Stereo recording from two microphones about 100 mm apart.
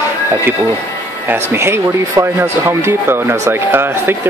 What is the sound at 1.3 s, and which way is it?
Speech, 25° right (ahead or behind).